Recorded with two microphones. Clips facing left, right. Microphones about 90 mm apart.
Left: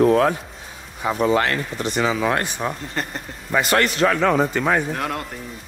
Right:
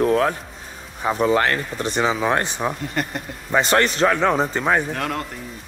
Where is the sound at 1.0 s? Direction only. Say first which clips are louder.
Right 1 dB; 35° right (ahead or behind).